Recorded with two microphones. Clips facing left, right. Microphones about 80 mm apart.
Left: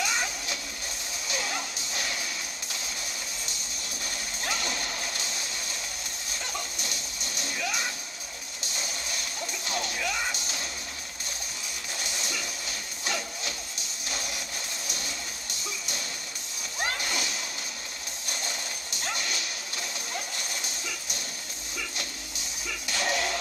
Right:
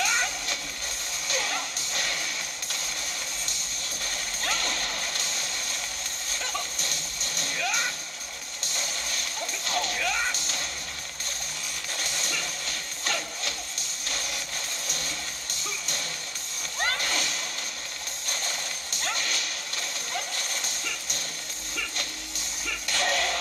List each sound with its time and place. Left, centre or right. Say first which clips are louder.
0.0 s music: right 2 dB; centre
4.0 s music: right 2 dB; centre
6.8 s music: right 1 dB; centre
9.7 s music: right 3 dB; centre
12.0 s music: right 2 dB; centre
16.8 s a sound: right 2 dB; centre
19.0 s whip: right 2 dB; centre
22.8 s music: right 1 dB; centre